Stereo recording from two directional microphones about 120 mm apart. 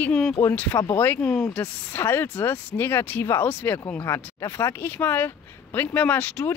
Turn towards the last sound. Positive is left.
turn(degrees=10)  # may be behind; listen again after turning